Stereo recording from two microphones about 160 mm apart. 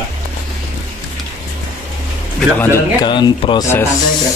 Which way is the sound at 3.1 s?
30° left (ahead or behind).